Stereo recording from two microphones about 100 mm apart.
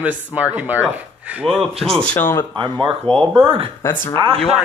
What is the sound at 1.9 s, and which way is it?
Speech, 10° left (ahead or behind).